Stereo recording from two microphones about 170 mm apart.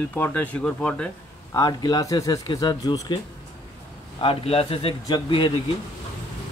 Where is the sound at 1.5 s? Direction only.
25° left (ahead or behind).